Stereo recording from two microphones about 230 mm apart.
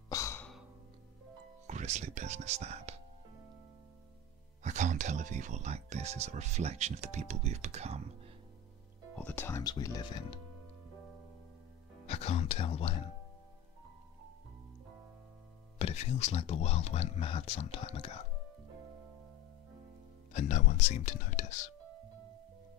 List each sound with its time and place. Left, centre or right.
0.1 s sigh: centre
1.7 s speech: right
4.6 s speech: right
9.1 s speech: centre
12.1 s speech: left
15.8 s speech: left
20.3 s speech: left